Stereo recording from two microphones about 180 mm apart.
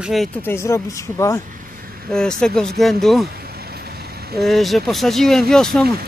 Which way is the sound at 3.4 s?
60° right (ahead or behind).